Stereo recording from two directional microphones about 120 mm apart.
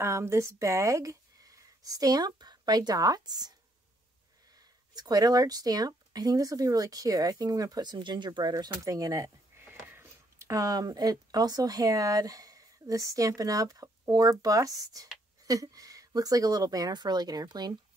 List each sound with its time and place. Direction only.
0.0 s speech: 20° right (ahead or behind)
4.6 s speech: 30° right (ahead or behind)